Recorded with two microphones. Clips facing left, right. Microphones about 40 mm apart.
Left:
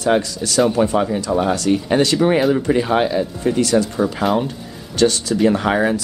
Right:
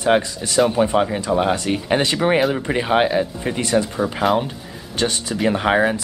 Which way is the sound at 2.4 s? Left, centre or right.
Centre.